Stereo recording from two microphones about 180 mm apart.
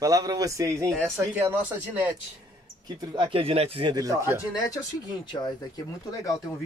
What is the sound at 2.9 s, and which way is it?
Speech, 25° right (ahead or behind).